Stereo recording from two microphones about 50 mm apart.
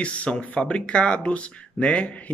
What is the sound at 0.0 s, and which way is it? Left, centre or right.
Speech, left.